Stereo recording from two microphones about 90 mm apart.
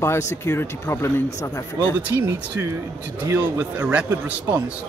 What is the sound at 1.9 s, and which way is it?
Speech, 20° right (ahead or behind).